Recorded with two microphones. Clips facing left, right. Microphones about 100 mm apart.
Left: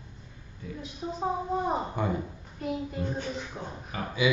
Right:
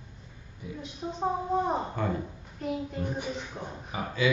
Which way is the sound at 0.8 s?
5° left (ahead or behind).